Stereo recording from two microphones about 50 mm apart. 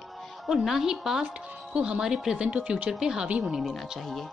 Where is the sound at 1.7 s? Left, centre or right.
Centre.